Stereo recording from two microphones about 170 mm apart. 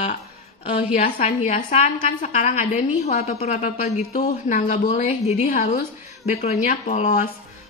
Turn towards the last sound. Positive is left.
turn(degrees=45)  # may be behind; listen again after turning